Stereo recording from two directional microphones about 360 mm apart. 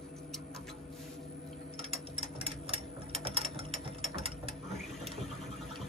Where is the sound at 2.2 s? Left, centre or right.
Centre.